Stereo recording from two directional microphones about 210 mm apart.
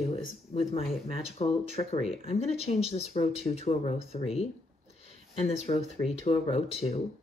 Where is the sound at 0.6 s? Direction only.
30° left (ahead or behind).